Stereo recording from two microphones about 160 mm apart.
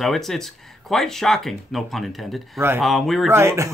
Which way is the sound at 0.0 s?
Centre (ahead or behind).